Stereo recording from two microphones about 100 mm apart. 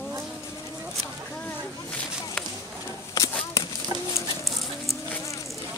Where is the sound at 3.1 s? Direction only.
35° left (ahead or behind).